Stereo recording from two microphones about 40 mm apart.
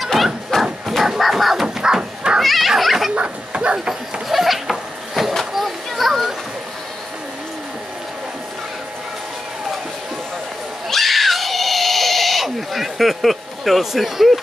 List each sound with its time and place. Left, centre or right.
0.0 s bow-wow: centre
0.5 s bow-wow: centre
0.8 s music: centre
1.8 s bow-wow: centre
2.4 s children playing: centre
2.8 s dog: centre
3.2 s bow-wow: right
4.3 s a sound: centre
5.5 s children playing: centre
10.9 s cat: centre